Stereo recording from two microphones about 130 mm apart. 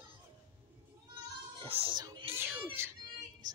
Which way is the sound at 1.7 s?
45° right (ahead or behind).